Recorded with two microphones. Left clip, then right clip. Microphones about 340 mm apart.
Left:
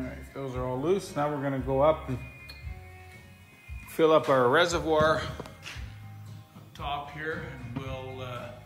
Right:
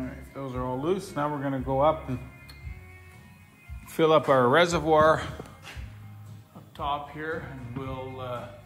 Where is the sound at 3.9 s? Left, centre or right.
Right.